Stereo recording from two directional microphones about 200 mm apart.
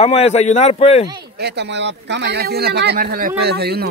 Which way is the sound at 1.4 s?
55° right (ahead or behind).